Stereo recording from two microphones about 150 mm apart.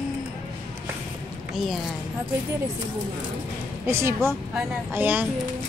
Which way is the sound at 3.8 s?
20° right (ahead or behind).